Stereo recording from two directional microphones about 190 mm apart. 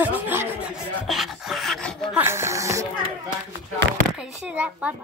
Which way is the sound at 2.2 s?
15° right (ahead or behind).